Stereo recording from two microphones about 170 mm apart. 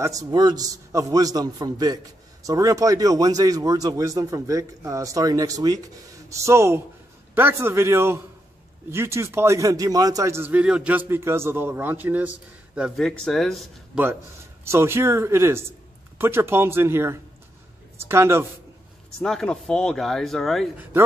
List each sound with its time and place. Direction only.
0.0 s a man's voice: 20° right (ahead or behind); by 13.7 s centre (ahead or behind)
14.6 s a man's voice: 15° right (ahead or behind)
19.2 s speech: 5° left (ahead or behind)